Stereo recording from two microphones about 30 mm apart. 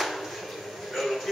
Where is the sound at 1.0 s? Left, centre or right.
Centre.